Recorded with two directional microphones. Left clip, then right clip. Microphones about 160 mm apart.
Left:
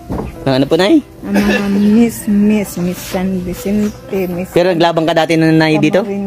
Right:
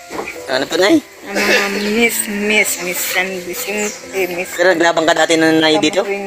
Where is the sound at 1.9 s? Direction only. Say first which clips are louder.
Left 1 dB; 15° left (ahead or behind).